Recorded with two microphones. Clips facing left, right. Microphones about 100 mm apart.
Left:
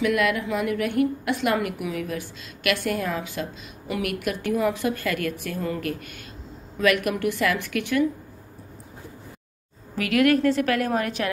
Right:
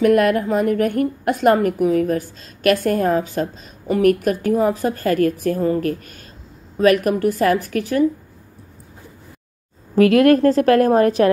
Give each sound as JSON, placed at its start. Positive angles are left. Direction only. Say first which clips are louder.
{"t": 0.0, "sound": "a woman's voice", "louder": "right 8 dB", "side_deg": -45}
{"t": 9.9, "sound": "a woman's voice", "louder": "right 8 dB", "side_deg": -35}